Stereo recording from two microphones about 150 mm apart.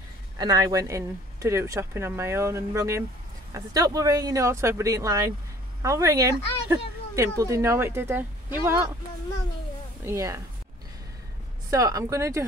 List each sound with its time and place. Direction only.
0.4 s speech: 25° right (ahead or behind)
10.0 s speech: 20° right (ahead or behind)
11.7 s speech: 20° right (ahead or behind)